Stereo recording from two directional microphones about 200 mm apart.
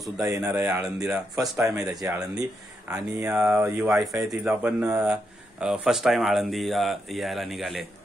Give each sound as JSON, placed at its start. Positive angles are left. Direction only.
{"t": 0.2, "sound": "speech", "side_deg": -15}
{"t": 1.4, "sound": "speech", "side_deg": -15}